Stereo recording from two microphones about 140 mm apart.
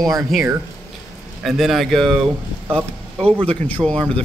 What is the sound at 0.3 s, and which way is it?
A man's voice, centre (ahead or behind).